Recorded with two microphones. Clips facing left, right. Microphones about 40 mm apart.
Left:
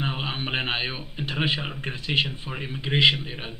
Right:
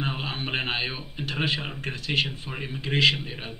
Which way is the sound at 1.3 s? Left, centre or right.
Centre.